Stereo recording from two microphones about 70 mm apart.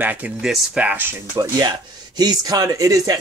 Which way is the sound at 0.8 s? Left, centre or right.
Centre.